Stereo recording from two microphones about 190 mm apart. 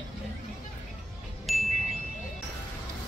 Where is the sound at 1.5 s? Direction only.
Centre (ahead or behind).